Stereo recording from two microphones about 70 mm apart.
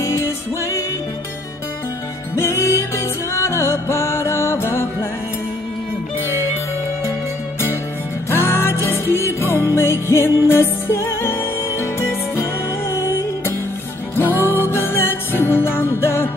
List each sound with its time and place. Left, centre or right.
0.0 s music: left
2.3 s music: left
8.3 s music: left